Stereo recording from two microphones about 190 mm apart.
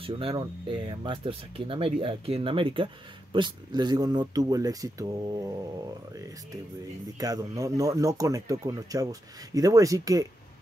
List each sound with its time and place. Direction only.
0.0 s speech: 25° right (ahead or behind)
7.2 s speech: 20° right (ahead or behind)